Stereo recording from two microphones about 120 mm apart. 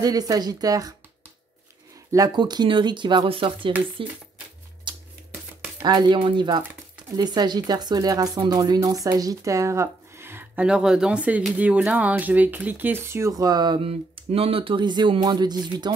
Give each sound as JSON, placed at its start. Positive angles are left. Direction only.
{"t": 0.0, "sound": "speech", "side_deg": -30}
{"t": 2.1, "sound": "speech", "side_deg": -35}
{"t": 4.9, "sound": "shuffling cards", "side_deg": -40}
{"t": 5.8, "sound": "speech", "side_deg": -35}